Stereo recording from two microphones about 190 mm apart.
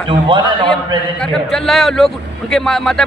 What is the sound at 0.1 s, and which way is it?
Speech, 25° right (ahead or behind).